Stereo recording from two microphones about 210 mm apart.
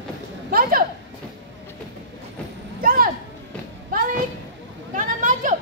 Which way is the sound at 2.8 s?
45° right (ahead or behind).